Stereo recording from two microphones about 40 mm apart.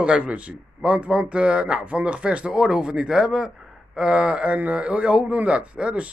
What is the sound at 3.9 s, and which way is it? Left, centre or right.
A man's voice, right.